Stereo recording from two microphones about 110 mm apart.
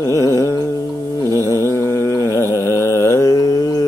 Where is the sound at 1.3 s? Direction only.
25° left (ahead or behind).